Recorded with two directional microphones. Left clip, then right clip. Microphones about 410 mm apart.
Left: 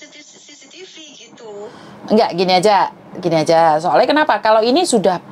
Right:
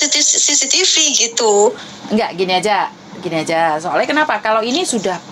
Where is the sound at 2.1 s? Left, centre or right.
Left.